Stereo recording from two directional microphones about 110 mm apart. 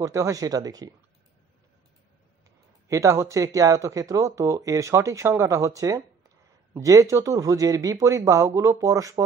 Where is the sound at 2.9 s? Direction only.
30° right (ahead or behind).